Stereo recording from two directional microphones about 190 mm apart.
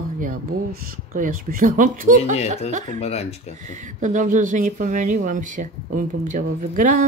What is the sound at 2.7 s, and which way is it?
Speech, 40° right (ahead or behind).